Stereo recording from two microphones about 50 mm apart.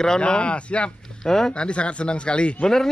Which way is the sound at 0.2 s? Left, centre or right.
Left.